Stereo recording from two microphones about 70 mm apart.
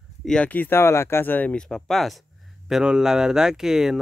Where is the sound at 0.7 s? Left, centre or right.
Left.